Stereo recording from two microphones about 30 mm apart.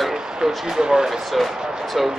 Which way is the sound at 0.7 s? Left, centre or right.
Right.